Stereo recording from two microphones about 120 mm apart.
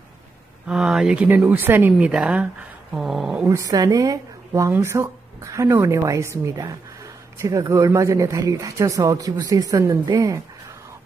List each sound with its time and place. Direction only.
0.7 s speech: 5° right (ahead or behind)
3.4 s speech: 25° right (ahead or behind)